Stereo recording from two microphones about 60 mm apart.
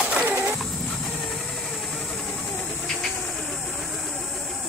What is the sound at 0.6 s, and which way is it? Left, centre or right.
Vehicle, centre.